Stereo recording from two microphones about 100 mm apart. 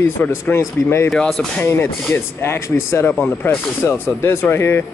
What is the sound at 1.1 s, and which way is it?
Speech, 10° left (ahead or behind).